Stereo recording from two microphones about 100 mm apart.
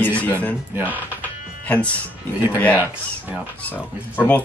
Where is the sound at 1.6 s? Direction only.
15° left (ahead or behind).